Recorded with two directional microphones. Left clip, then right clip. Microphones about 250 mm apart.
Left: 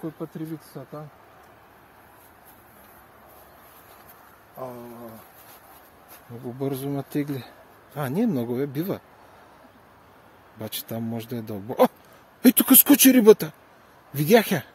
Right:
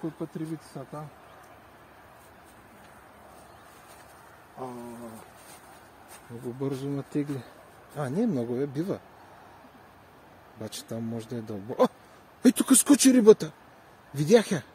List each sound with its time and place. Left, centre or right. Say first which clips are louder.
0.0 s speech: left 1 dB; left
4.6 s speech: left 3 dB; left
6.6 s speech: left 4 dB; left
10.6 s speech: left 4 dB; left